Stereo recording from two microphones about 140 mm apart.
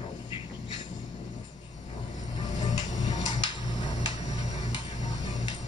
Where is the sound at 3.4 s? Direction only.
35° left (ahead or behind).